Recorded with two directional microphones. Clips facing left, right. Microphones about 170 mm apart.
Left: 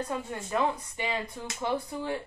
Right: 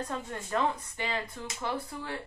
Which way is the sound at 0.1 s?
10° left (ahead or behind).